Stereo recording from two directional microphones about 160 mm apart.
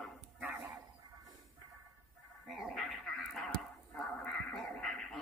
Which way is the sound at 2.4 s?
Centre (ahead or behind).